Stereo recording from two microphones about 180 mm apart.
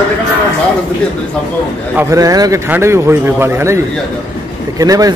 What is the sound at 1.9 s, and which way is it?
A man's voice, 20° right (ahead or behind).